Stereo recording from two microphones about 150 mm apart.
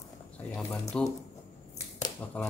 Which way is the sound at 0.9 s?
5° left (ahead or behind).